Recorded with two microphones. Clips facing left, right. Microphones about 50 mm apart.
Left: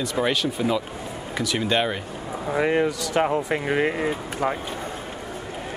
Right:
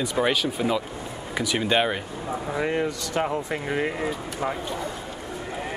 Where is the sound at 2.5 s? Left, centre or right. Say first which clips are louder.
Left 5 dB; centre.